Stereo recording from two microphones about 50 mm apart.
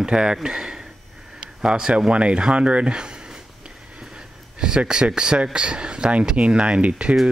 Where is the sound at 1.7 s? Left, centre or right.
Centre.